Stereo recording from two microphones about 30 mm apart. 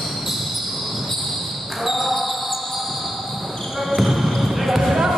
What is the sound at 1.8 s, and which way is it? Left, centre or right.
Basketball bounce, centre.